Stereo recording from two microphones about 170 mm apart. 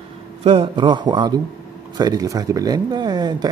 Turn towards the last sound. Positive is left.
turn(degrees=-25)  # may be behind; listen again after turning